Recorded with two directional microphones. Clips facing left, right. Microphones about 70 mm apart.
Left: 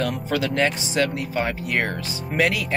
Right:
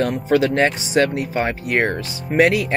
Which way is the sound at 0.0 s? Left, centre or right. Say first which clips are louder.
Right 7 dB; right.